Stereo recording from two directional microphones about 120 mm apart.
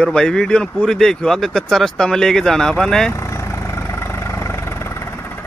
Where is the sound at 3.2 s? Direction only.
25° left (ahead or behind).